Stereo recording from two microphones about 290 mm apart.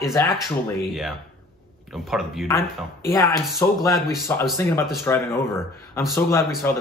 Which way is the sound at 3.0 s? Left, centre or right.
Centre.